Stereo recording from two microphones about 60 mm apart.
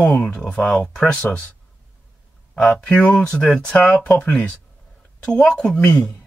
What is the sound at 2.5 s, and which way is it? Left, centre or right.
Speech, centre.